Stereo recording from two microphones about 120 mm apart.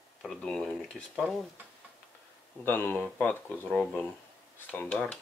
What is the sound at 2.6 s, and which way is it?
Speech, 15° left (ahead or behind).